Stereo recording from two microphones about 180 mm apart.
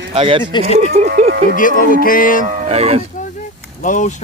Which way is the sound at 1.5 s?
50° left (ahead or behind).